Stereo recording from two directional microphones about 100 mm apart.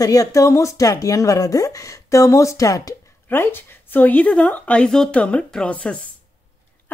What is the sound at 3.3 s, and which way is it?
A woman's voice, 20° left (ahead or behind).